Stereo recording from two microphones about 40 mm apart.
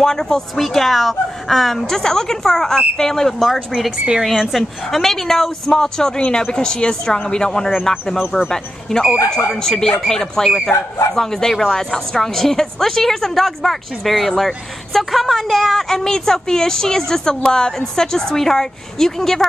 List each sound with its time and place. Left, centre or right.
0.0 s a woman's voice: centre
0.6 s a woman's voice: centre
4.2 s speech: centre
5.0 s a woman's voice: centre
15.9 s a woman's voice: centre